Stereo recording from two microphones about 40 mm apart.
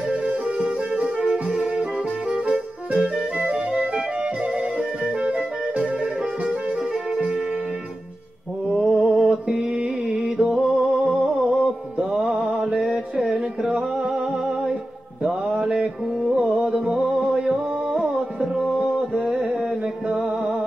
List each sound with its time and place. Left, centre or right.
0.1 s music: right
6.5 s music: centre
7.2 s music: right
8.7 s music: centre
10.6 s music: right
11.1 s a sound: centre
12.4 s mantra: right
12.7 s mantra: centre
13.4 s music: right
13.9 s music: centre
15.2 s mantra: centre
16.3 s music: right